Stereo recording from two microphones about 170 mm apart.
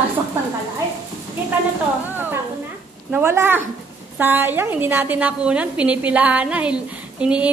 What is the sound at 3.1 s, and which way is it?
A woman's voice, 10° right (ahead or behind).